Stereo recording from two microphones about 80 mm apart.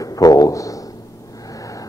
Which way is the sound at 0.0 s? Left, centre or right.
Left.